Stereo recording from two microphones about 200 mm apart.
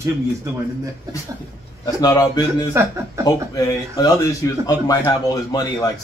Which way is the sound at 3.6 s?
20° left (ahead or behind).